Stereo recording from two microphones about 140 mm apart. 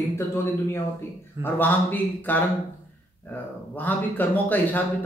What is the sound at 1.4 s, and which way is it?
Speech, 15° left (ahead or behind).